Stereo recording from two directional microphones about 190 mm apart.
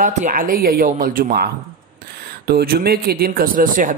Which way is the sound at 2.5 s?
55° right (ahead or behind).